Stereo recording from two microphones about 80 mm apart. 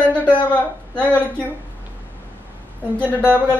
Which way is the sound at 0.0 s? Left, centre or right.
Centre.